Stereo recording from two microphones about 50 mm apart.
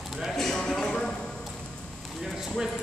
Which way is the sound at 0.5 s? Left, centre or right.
Centre.